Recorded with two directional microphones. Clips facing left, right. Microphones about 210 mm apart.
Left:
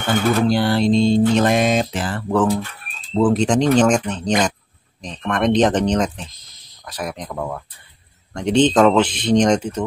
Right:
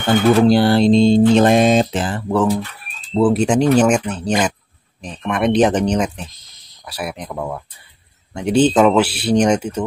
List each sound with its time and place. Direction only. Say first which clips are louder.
0.5 s a sound: right 4 dB; 30° right (ahead or behind)
1.3 s mantra: right 4 dB; 30° right (ahead or behind)
2.0 s a man's voice: right 1 dB; 15° right (ahead or behind)